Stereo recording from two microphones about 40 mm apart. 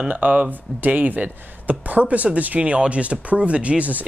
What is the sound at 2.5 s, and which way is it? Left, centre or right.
Speech, right.